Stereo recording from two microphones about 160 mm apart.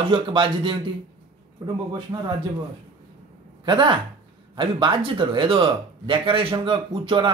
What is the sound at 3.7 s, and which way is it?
Speech, 30° right (ahead or behind).